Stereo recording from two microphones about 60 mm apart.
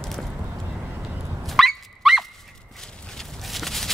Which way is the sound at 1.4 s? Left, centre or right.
Centre.